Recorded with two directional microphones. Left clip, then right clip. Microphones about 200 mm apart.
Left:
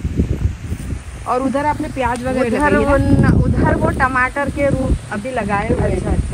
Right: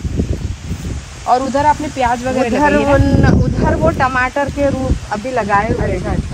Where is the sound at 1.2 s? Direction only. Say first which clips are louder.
Right 5 dB; 45° right (ahead or behind).